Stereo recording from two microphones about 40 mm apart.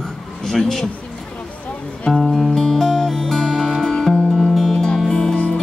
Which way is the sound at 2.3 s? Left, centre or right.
Centre.